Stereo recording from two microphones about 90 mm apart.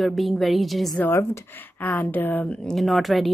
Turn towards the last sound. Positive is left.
turn(degrees=0)  # may be behind; listen again after turning